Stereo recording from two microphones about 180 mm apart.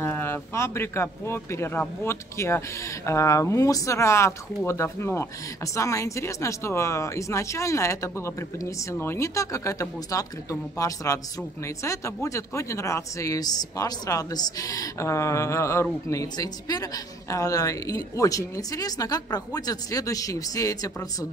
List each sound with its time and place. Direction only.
0.0 s speech: 10° left (ahead or behind)